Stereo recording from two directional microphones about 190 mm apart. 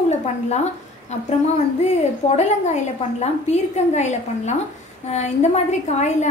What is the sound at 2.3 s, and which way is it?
A woman's voice, 35° left (ahead or behind).